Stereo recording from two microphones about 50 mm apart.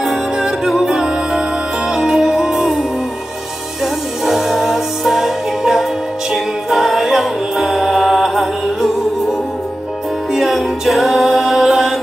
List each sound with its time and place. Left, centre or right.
0.0 s music: centre
6.3 s a capella: centre
10.3 s music: centre